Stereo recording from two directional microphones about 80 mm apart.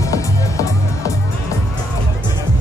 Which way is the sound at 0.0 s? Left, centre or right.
Left.